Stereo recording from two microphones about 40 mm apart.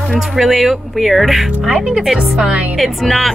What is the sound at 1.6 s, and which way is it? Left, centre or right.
Speech, centre.